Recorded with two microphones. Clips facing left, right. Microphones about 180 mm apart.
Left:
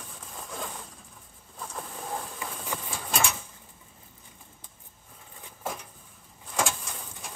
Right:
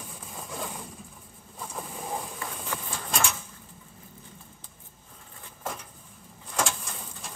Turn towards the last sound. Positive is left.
turn(degrees=0)  # may be behind; listen again after turning